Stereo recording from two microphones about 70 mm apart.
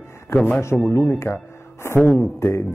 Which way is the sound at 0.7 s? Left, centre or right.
Centre.